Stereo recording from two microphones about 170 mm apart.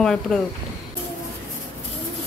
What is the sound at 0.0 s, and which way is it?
Speech, 5° left (ahead or behind).